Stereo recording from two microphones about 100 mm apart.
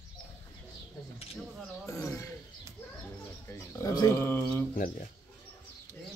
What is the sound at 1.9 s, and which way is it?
Speech, 35° left (ahead or behind).